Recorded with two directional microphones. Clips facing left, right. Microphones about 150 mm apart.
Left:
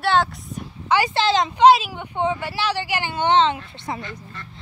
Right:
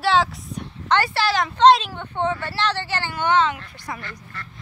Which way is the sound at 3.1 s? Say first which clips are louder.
Left 2 dB; 25° left (ahead or behind).